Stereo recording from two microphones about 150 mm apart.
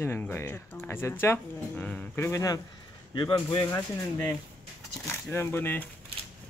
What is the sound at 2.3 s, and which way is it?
Speech, 20° left (ahead or behind).